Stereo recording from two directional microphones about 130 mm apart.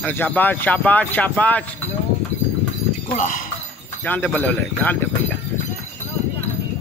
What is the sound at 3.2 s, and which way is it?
Speech, 90° left.